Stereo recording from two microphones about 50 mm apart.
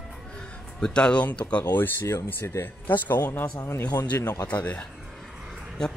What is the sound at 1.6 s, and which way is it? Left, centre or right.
Speech, left.